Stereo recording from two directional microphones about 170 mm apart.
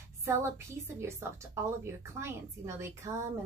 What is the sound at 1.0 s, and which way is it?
A woman's voice, 15° right (ahead or behind).